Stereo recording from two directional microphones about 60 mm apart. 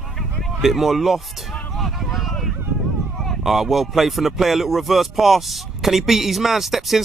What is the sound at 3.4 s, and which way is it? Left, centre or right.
Speech, centre.